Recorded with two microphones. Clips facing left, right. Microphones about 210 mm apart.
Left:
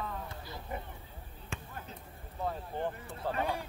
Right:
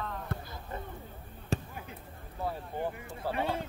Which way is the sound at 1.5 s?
35° right (ahead or behind).